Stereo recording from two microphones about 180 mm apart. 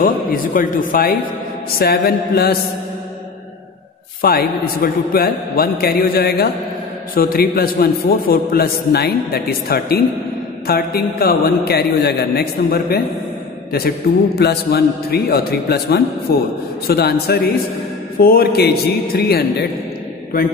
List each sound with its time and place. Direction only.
0.0 s a man's voice: 50° left (ahead or behind)
4.2 s a man's voice: 55° left (ahead or behind)